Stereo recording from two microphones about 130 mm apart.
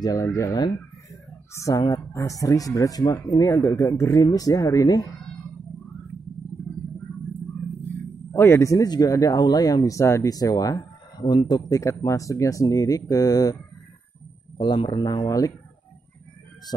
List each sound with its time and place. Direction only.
0.0 s speech: 25° left (ahead or behind)
8.3 s speech: 20° left (ahead or behind)
14.6 s speech: 35° left (ahead or behind)